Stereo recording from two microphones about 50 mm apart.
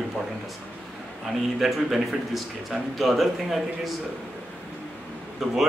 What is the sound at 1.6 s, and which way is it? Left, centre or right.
Speech, centre.